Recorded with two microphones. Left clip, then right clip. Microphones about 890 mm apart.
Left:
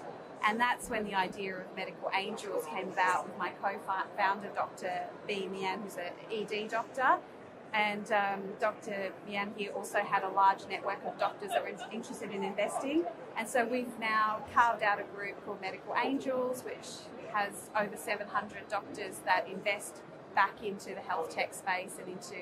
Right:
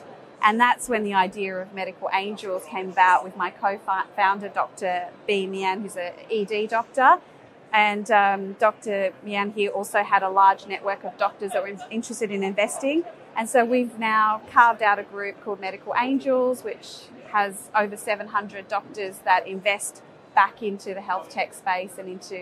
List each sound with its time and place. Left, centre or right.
0.4 s a woman's voice: right